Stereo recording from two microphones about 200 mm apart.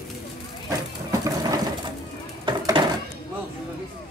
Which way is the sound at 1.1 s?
20° right (ahead or behind).